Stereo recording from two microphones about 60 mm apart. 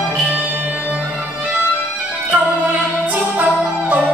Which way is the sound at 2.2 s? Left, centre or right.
Right.